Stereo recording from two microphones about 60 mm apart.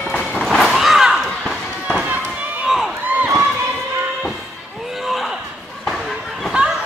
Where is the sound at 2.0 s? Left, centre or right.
Right.